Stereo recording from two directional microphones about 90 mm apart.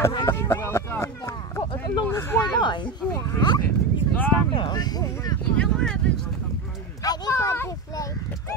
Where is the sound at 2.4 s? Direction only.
55° left (ahead or behind).